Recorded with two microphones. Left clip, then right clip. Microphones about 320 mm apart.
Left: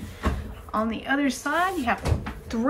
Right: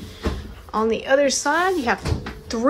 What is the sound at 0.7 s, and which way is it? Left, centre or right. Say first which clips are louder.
A woman's voice: right 7 dB; centre.